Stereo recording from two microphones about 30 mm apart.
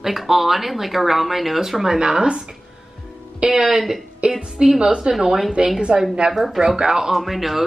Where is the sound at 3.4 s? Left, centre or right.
Right.